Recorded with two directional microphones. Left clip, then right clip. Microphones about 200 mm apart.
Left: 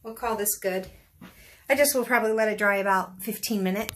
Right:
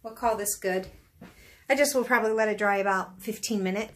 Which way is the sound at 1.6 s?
5° left (ahead or behind).